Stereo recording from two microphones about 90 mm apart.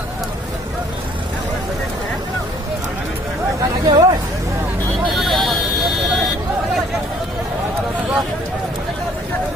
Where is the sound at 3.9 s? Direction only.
60° right (ahead or behind).